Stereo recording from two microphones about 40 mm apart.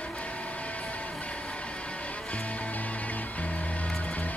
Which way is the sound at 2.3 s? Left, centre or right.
Left.